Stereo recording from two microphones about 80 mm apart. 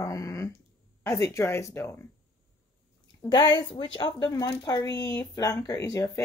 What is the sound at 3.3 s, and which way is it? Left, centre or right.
Speech, left.